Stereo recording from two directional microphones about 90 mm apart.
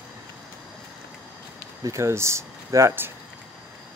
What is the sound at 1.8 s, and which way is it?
Speech, 35° right (ahead or behind).